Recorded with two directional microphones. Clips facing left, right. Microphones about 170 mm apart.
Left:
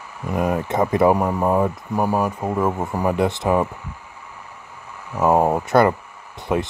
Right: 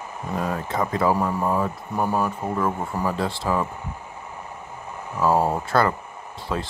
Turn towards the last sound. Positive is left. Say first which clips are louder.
# left 6 dB
turn(degrees=20)  # may be behind; listen again after turning